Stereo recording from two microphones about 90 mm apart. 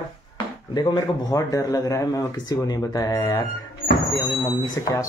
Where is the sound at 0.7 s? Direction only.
45° left (ahead or behind).